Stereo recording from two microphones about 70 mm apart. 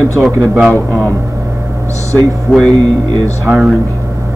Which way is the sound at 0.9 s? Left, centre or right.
Right.